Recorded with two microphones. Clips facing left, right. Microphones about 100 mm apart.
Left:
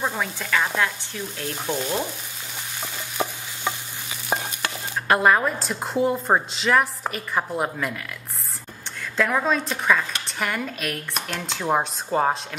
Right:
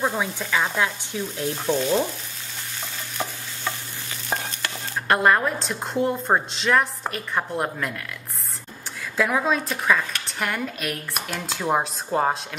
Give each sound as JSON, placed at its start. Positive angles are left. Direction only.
{"t": 0.0, "sound": "speech", "side_deg": -10}
{"t": 1.7, "sound": "frying", "side_deg": 10}
{"t": 3.2, "sound": "stir", "side_deg": 15}
{"t": 5.0, "sound": "a woman's voice", "side_deg": 0}
{"t": 9.1, "sound": "a woman's voice", "side_deg": -5}